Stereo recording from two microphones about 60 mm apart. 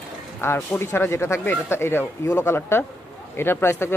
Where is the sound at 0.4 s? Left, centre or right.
Left.